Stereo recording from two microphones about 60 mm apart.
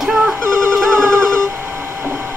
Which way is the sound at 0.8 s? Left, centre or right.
Right.